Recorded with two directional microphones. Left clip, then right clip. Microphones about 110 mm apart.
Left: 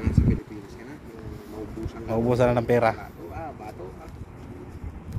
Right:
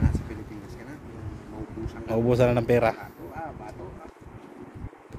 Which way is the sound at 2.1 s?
55° right (ahead or behind).